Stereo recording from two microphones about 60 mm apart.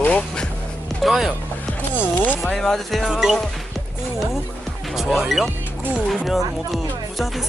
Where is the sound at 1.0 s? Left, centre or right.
Centre.